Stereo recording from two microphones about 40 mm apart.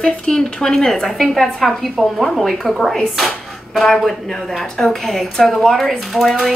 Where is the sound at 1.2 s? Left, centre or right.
Centre.